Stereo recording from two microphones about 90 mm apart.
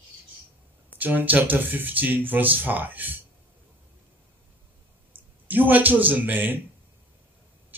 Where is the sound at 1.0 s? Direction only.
20° right (ahead or behind).